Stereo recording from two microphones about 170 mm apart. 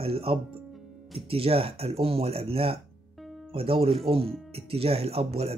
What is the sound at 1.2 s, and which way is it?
Speech, 35° right (ahead or behind).